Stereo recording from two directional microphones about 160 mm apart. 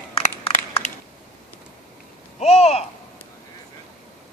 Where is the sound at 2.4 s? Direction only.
40° left (ahead or behind).